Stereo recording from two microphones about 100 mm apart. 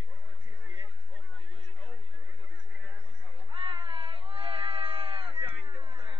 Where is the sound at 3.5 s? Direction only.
60° right (ahead or behind).